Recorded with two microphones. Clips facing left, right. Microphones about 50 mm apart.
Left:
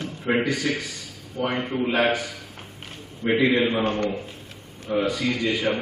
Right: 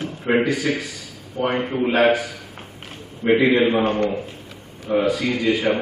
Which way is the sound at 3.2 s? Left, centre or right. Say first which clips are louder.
Right 4 dB; right.